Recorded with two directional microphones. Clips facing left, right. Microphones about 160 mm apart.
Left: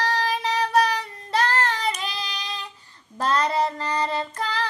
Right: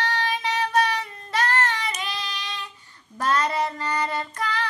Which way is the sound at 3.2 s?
30° left (ahead or behind).